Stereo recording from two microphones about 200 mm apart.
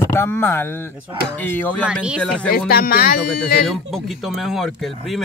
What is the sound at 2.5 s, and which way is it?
Speech, 50° left (ahead or behind).